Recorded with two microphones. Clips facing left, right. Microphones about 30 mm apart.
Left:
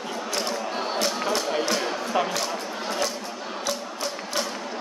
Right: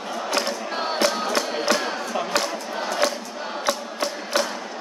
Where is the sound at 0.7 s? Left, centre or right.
Right.